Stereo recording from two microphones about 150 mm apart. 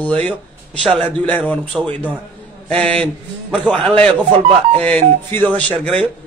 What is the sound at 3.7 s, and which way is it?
Speech, 35° right (ahead or behind).